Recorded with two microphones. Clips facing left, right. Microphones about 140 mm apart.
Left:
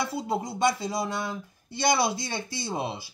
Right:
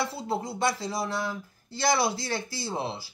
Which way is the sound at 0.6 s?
20° left (ahead or behind).